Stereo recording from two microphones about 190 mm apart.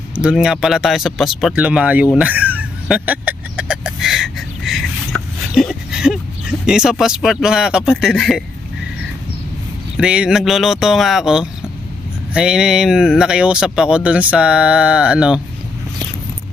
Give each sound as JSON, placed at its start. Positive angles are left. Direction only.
{"t": 0.2, "sound": "speech", "side_deg": -5}
{"t": 2.1, "sound": "vehicle", "side_deg": -10}
{"t": 9.9, "sound": "speech", "side_deg": -5}